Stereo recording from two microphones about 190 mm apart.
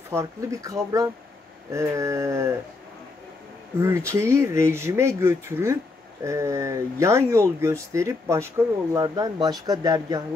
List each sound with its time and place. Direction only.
0.1 s speech: 15° right (ahead or behind)
4.1 s speech: 15° right (ahead or behind)